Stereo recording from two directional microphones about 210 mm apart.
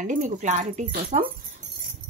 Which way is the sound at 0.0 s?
35° right (ahead or behind).